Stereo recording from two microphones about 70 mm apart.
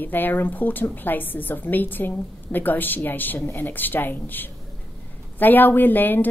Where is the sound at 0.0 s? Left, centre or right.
Left.